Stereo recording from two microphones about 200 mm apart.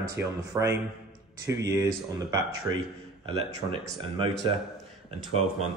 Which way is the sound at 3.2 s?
25° right (ahead or behind).